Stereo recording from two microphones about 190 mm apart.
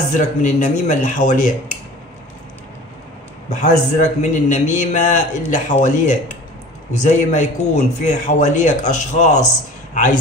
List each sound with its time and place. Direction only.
0.4 s a man's voice: 40° left (ahead or behind)
3.4 s a man's voice: 40° left (ahead or behind)